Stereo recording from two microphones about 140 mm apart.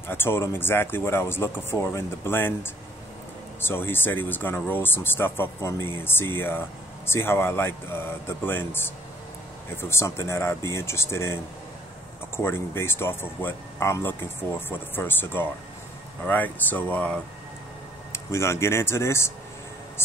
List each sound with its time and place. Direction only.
0.1 s speech: 15° left (ahead or behind)
12.4 s speech: 15° left (ahead or behind)